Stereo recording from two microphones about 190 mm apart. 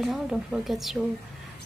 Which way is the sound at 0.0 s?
Centre (ahead or behind).